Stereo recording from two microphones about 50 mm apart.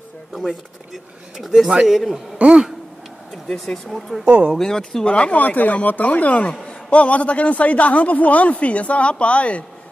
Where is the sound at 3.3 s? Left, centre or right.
Centre.